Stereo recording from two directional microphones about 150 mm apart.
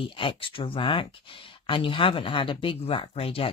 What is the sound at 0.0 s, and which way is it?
Speech, 35° left (ahead or behind).